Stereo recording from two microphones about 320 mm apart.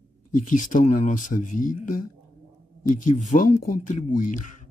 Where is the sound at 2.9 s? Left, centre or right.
Left.